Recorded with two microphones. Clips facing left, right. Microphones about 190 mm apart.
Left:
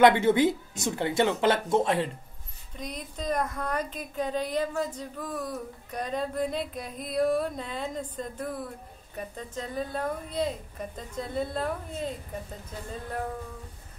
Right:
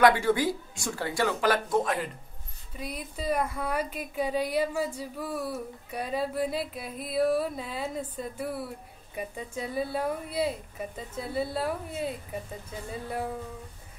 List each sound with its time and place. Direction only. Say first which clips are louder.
0.0 s speech: left 3 dB; 20° left (ahead or behind)
2.7 s speech: right 1 dB; 5° right (ahead or behind)